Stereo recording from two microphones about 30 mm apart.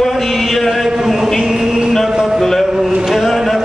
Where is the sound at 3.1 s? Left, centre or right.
Centre.